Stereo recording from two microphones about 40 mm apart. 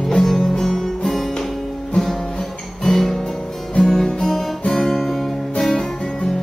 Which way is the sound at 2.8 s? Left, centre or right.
Centre.